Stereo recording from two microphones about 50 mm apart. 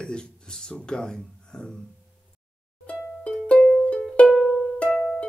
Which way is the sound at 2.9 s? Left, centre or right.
Left.